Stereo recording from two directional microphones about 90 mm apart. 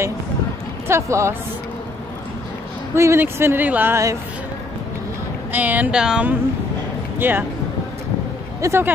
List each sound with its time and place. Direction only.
0.8 s speech: 30° right (ahead or behind)
2.9 s speech: 30° right (ahead or behind)
3.9 s speech: 35° right (ahead or behind)
5.5 s speech: 20° right (ahead or behind)
7.2 s speech: 25° right (ahead or behind)
8.5 s speech: 35° right (ahead or behind)